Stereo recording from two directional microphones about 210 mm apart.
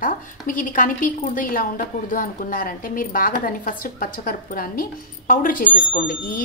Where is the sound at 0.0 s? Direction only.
40° left (ahead or behind).